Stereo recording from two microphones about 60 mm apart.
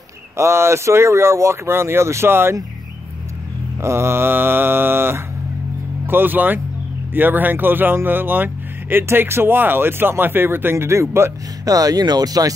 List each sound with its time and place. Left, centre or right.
0.4 s speech: right
3.8 s speech: right
11.6 s speech: right